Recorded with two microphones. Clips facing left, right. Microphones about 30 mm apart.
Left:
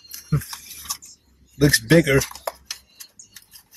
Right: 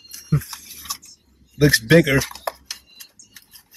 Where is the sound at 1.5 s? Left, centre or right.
Centre.